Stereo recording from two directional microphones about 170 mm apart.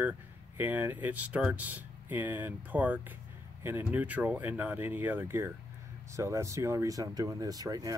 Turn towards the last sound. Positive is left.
turn(degrees=-20)  # may be behind; listen again after turning